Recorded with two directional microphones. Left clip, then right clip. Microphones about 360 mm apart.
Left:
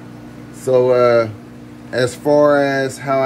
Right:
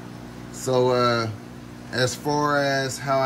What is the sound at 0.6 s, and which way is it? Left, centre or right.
Speech, centre.